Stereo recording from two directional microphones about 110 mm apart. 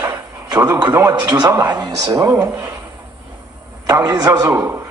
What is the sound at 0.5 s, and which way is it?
Speech, 35° right (ahead or behind).